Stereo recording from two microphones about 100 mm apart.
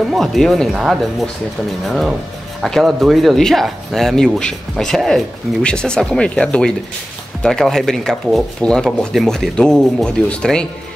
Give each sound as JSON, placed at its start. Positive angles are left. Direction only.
{"t": 0.1, "sound": "speech", "side_deg": 0}